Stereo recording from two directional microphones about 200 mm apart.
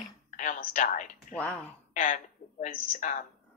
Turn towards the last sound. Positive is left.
turn(degrees=40)  # may be behind; listen again after turning